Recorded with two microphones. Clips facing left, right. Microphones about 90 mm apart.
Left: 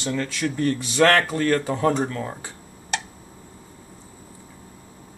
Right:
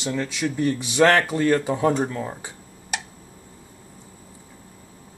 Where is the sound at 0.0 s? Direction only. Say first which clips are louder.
Even; 15° right (ahead or behind).